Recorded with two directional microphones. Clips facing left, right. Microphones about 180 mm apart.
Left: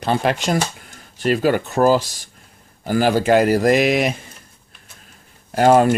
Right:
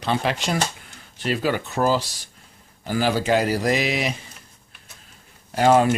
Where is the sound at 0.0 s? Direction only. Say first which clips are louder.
Left 4 dB; 50° left (ahead or behind).